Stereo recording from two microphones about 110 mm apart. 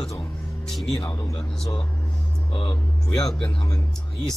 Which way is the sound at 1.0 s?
30° left (ahead or behind).